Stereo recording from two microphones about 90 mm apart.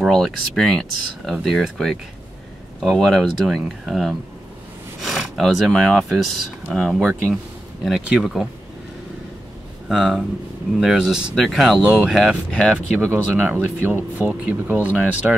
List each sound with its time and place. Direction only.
0.0 s speech: centre (ahead or behind)
7.0 s speech: 25° right (ahead or behind)
7.8 s speech: 5° right (ahead or behind)
9.8 s speech: centre (ahead or behind)
13.0 s speech: 25° right (ahead or behind)